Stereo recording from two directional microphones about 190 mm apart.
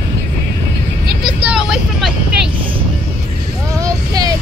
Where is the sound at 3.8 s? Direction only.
20° right (ahead or behind).